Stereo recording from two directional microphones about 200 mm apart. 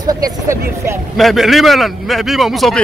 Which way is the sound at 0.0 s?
20° right (ahead or behind).